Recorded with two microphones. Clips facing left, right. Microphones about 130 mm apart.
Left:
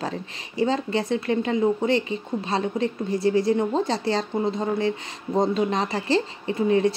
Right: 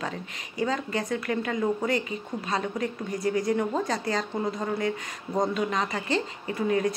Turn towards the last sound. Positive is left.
turn(degrees=25)  # may be behind; listen again after turning